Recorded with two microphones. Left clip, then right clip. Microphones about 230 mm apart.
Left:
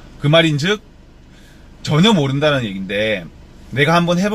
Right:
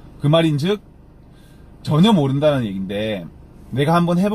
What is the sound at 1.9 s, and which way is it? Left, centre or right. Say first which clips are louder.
A man's voice: left 2 dB; centre.